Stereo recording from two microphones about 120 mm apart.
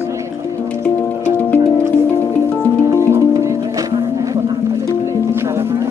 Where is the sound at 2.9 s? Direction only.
20° right (ahead or behind).